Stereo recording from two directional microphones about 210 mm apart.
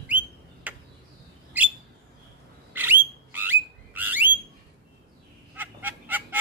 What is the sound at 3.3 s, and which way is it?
Bird, 10° right (ahead or behind).